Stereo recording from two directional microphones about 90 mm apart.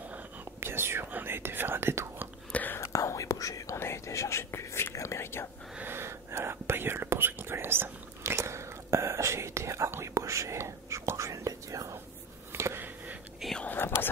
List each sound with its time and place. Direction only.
0.6 s whispering: 25° right (ahead or behind)
2.5 s whispering: 20° left (ahead or behind)
2.8 s whispering: 35° left (ahead or behind)
5.8 s whispering: 25° right (ahead or behind)
12.5 s a sound: 25° right (ahead or behind)
13.6 s whispering: 20° left (ahead or behind)